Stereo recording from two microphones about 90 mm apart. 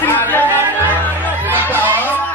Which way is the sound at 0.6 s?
25° right (ahead or behind).